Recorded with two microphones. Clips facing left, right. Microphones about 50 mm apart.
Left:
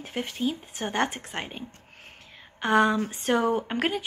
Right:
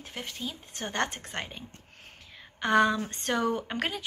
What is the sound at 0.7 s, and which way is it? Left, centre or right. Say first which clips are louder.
Speech: even; centre.